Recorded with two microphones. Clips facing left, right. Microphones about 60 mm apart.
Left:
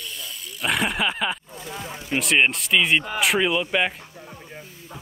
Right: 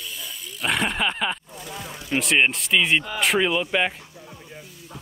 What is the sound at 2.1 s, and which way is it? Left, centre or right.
Speech, centre.